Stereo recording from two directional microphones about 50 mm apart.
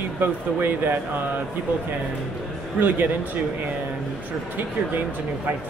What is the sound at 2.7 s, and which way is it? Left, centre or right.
Speech, right.